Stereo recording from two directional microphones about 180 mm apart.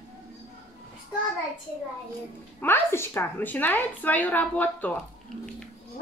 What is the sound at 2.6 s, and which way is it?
A woman's voice, 15° left (ahead or behind).